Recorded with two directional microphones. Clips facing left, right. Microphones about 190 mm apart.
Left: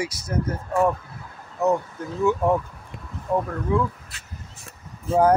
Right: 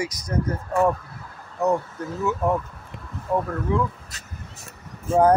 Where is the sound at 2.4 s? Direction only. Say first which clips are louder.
Left 2 dB; 10° left (ahead or behind).